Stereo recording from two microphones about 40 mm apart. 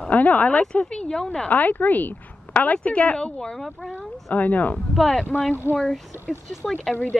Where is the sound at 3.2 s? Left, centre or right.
Centre.